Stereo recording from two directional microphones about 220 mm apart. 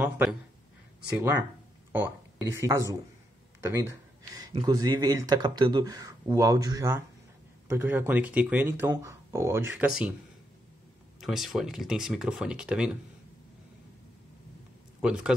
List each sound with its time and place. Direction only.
0.0 s speech: 5° right (ahead or behind)
11.1 s speech: centre (ahead or behind)
15.0 s a man's voice: 5° right (ahead or behind)